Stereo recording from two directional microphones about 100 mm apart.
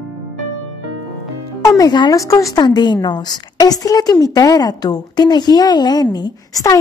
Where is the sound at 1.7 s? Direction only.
40° left (ahead or behind).